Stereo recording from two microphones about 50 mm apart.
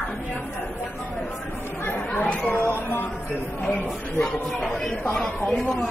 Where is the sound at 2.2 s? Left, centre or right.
Left.